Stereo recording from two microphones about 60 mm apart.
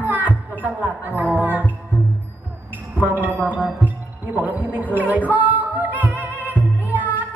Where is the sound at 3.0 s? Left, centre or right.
Right.